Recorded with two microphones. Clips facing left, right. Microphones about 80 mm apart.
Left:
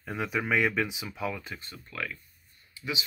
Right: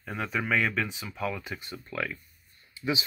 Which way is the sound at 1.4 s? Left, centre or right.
Centre.